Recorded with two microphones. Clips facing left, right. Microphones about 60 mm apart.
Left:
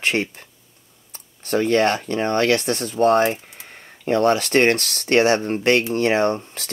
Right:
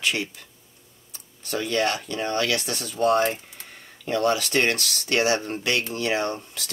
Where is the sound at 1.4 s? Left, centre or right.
Left.